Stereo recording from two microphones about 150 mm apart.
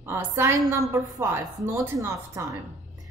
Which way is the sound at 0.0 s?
15° right (ahead or behind).